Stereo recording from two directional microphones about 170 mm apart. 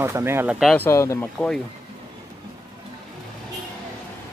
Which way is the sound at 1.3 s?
5° left (ahead or behind).